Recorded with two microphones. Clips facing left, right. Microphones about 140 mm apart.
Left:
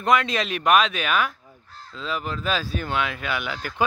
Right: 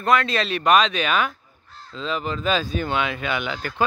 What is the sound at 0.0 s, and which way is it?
Speech, 15° left (ahead or behind).